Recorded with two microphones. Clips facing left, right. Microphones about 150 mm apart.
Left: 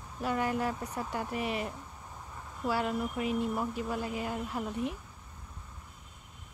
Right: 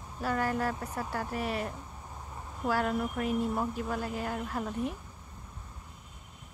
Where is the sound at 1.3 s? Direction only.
40° right (ahead or behind).